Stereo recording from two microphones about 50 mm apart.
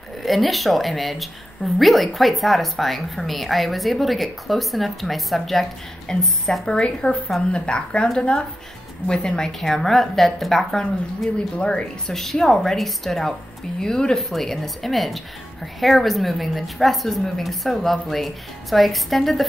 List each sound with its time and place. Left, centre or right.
0.2 s a woman's voice: centre
11.3 s speech: centre
12.1 s a woman's voice: centre